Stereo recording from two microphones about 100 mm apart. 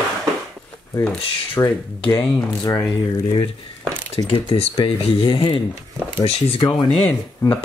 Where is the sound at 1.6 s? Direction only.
30° left (ahead or behind).